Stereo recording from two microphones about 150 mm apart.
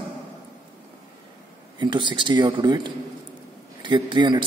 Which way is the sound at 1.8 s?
30° right (ahead or behind).